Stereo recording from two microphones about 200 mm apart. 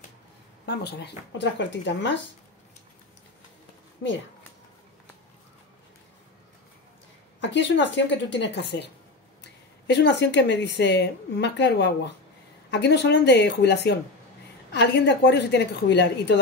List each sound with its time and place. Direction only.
0.7 s a woman's voice: 55° left (ahead or behind)
7.3 s a woman's voice: 60° left (ahead or behind)